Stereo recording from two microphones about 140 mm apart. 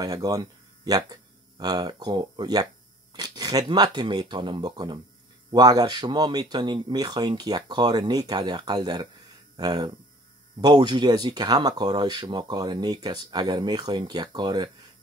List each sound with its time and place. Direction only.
0.0 s speech: 25° right (ahead or behind)